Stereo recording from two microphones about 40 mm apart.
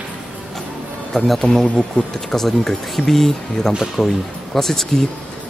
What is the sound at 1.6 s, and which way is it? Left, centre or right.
Speech, left.